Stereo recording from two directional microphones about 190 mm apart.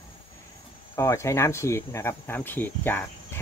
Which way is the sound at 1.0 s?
15° left (ahead or behind).